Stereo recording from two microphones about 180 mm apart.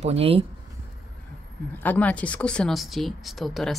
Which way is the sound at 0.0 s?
35° right (ahead or behind).